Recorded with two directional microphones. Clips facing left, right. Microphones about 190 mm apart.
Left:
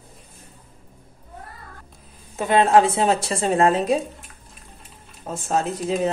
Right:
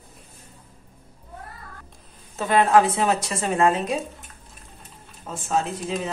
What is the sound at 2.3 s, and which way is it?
Speech, 20° left (ahead or behind).